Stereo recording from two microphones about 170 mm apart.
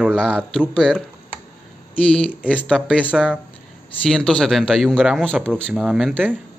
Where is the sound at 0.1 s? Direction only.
5° left (ahead or behind).